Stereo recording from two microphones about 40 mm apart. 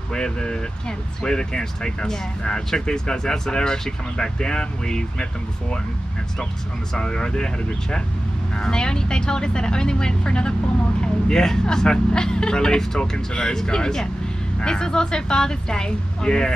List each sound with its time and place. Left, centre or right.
0.1 s speech: centre
6.9 s speech: left
8.5 s speech: left